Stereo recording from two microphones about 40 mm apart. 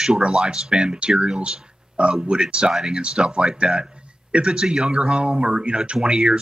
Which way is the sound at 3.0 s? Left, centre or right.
Right.